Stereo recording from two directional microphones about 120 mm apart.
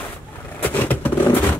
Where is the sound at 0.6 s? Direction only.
15° left (ahead or behind).